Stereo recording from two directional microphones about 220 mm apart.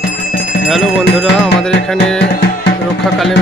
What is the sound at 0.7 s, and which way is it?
Music, centre (ahead or behind).